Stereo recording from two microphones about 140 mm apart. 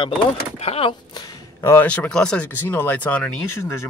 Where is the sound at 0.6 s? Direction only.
45° left (ahead or behind).